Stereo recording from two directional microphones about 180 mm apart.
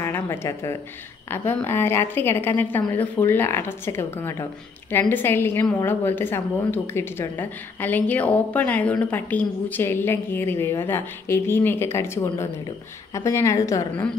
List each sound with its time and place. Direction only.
0.0 s a woman's voice: 15° left (ahead or behind)